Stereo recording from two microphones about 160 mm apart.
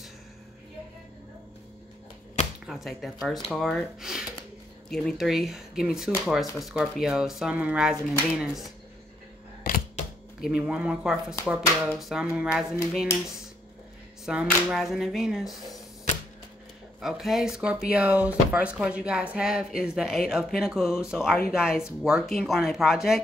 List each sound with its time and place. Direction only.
2.6 s speech: centre (ahead or behind)
9.6 s a sound: 55° left (ahead or behind)
10.4 s speech: 5° right (ahead or behind)
14.2 s speech: 5° right (ahead or behind)
17.0 s speech: centre (ahead or behind)